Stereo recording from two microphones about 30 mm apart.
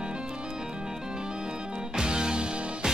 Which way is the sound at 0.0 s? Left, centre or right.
Right.